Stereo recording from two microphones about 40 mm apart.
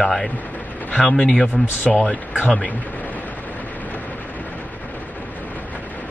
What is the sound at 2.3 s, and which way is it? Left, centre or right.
Speech, left.